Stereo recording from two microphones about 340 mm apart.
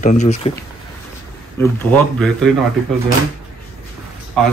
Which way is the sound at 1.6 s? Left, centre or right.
Centre.